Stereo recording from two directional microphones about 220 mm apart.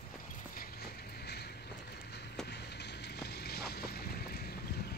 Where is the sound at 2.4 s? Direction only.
50° left (ahead or behind).